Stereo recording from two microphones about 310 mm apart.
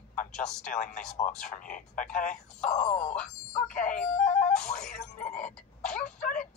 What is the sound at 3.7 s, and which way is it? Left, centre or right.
Music, left.